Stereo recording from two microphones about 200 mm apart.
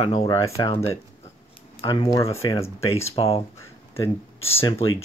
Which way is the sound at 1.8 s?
20° left (ahead or behind).